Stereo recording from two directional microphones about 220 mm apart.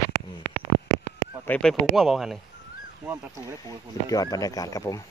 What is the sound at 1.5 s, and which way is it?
Speech, 5° left (ahead or behind).